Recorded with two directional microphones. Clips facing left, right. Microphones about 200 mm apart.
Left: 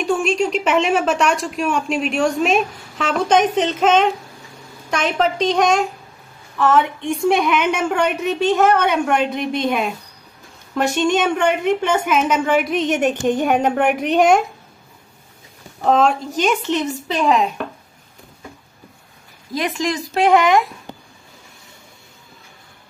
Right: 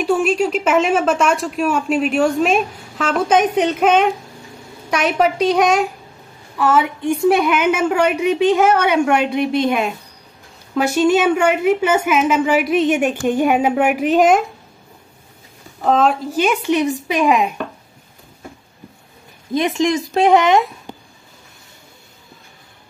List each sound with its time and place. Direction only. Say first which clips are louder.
0.0 s a woman's voice: right 2 dB; 5° right (ahead or behind)
15.8 s a woman's voice: even; centre (ahead or behind)
19.5 s speech: right 5 dB; 20° right (ahead or behind)